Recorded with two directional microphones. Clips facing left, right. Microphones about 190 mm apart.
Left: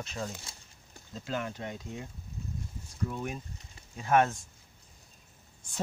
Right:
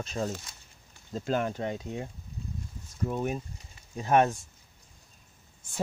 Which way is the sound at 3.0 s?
35° right (ahead or behind).